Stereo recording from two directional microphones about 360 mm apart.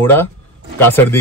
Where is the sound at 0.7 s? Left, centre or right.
Centre.